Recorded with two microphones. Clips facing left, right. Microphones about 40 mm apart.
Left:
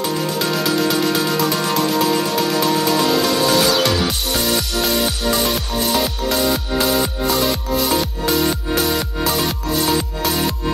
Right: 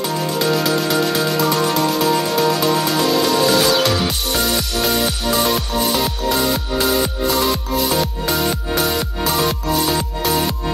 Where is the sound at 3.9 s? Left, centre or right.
Centre.